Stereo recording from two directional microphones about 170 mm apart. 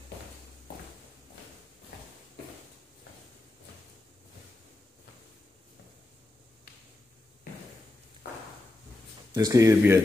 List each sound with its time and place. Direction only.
9.3 s speech: 20° right (ahead or behind)